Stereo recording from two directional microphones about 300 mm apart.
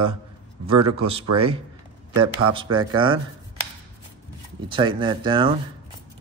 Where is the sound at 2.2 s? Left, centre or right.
Right.